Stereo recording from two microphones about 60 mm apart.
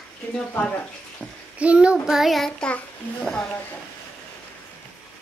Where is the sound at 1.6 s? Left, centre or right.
Right.